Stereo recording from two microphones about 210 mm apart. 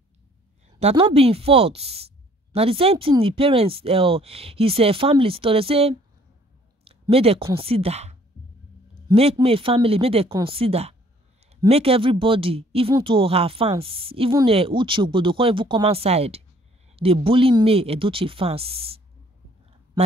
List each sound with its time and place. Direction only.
0.7 s a woman's voice: 30° right (ahead or behind)
6.8 s a sound: 30° right (ahead or behind)
7.5 s speech: 25° right (ahead or behind)